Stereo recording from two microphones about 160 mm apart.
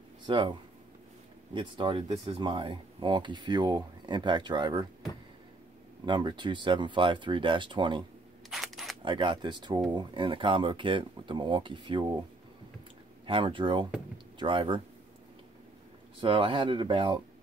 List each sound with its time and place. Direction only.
0.3 s speech: 30° right (ahead or behind)
6.0 s speech: 30° right (ahead or behind)
8.5 s single-lens reflex camera: centre (ahead or behind)
9.0 s speech: 30° right (ahead or behind)
13.3 s speech: 30° right (ahead or behind)
14.1 s a sound: 30° right (ahead or behind)
16.2 s speech: 30° right (ahead or behind)